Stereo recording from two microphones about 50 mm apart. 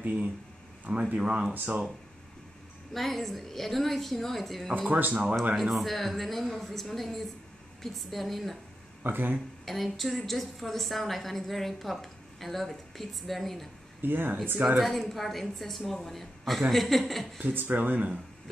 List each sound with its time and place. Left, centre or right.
0.8 s speech: right
2.9 s a woman's voice: centre
4.8 s speech: right
5.6 s a woman's voice: centre
9.0 s speech: right
9.7 s a woman's voice: centre
14.0 s speech: right
14.8 s a woman's voice: centre
17.4 s speech: right